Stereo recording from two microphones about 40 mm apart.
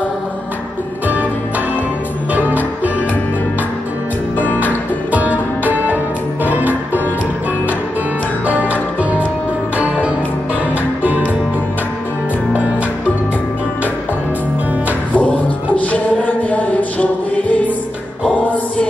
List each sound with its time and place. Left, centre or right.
2.3 s music: right
5.1 s music: right
8.5 s music: right
15.1 s music: left